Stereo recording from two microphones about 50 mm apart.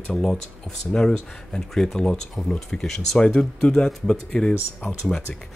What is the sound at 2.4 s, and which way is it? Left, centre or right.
Speech, centre.